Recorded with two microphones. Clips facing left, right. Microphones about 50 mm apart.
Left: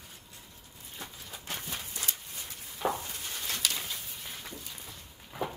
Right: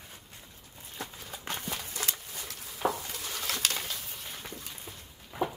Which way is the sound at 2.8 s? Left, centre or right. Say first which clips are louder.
Right 1 dB; centre.